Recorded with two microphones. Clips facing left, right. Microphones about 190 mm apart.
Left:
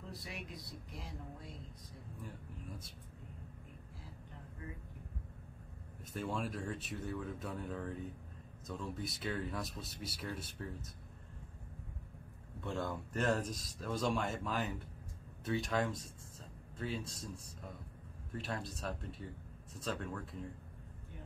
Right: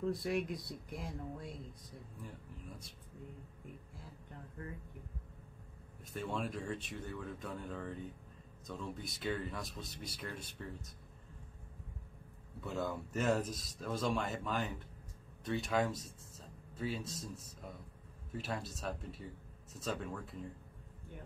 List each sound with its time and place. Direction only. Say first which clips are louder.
0.2 s speech: right 11 dB; 55° right (ahead or behind)
6.1 s speech: even; centre (ahead or behind)
12.5 s speech: right 1 dB; 5° right (ahead or behind)